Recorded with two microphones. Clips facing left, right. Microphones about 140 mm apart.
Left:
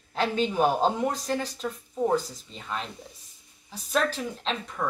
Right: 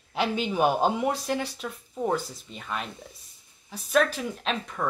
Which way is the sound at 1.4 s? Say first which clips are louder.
Left 2 dB; 35° left (ahead or behind).